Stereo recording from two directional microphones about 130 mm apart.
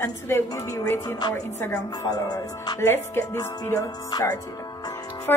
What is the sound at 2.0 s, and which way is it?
Music, 30° left (ahead or behind).